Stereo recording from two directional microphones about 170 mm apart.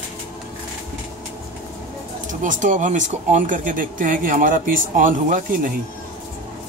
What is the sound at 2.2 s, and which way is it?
Speech, 50° right (ahead or behind).